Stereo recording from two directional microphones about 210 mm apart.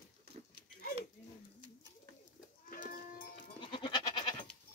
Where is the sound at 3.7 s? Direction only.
20° left (ahead or behind).